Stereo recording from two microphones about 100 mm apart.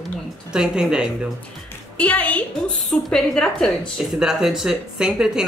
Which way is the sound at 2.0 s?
15° left (ahead or behind).